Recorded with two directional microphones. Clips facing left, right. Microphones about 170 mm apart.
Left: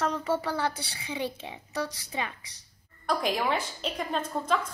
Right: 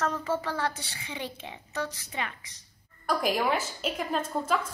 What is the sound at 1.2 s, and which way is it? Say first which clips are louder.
Speech: left 5 dB; 25° left (ahead or behind).